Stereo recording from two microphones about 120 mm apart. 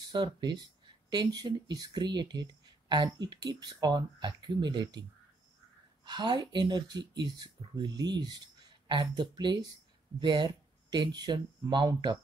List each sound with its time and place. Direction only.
0.0 s speech: 35° right (ahead or behind)
6.0 s speech: 40° right (ahead or behind)